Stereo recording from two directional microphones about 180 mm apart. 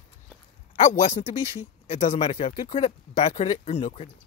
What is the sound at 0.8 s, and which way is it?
Speech, 45° left (ahead or behind).